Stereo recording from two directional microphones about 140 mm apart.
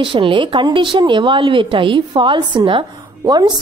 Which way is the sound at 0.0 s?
40° right (ahead or behind).